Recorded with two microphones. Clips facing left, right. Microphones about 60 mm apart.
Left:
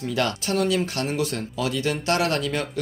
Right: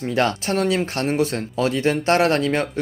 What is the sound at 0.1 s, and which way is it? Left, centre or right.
Speech, right.